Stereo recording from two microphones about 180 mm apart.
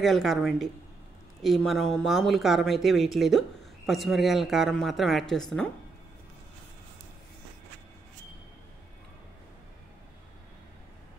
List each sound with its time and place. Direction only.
0.0 s speech: centre (ahead or behind)